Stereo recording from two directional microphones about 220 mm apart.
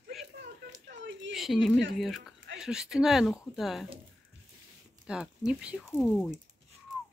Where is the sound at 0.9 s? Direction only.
55° right (ahead or behind).